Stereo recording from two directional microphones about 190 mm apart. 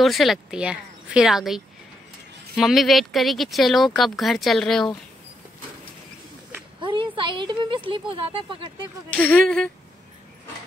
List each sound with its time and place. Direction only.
0.0 s speech: centre (ahead or behind)
6.8 s speech: 25° right (ahead or behind)
9.1 s speech: 10° left (ahead or behind)